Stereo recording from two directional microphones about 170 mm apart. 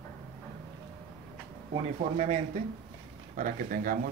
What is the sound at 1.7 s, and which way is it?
Speech, 40° right (ahead or behind).